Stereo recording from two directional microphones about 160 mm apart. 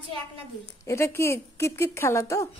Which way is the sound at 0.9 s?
15° left (ahead or behind).